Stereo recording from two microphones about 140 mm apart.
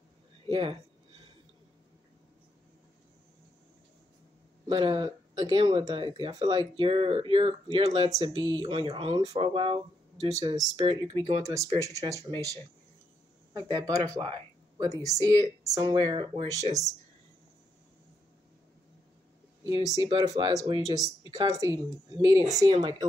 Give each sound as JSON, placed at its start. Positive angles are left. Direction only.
{"t": 0.5, "sound": "speech", "side_deg": -40}
{"t": 4.6, "sound": "speech", "side_deg": -35}
{"t": 10.2, "sound": "speech", "side_deg": -25}
{"t": 19.7, "sound": "speech", "side_deg": -30}